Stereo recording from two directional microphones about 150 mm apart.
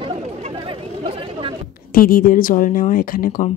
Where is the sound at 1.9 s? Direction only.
75° left (ahead or behind).